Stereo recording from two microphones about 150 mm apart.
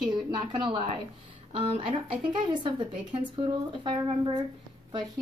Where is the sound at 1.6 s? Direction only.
40° right (ahead or behind).